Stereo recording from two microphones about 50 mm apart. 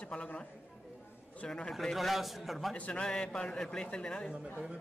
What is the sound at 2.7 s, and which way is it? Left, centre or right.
A man's voice, centre.